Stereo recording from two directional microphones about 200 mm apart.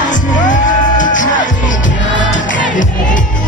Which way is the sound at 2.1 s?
65° left (ahead or behind).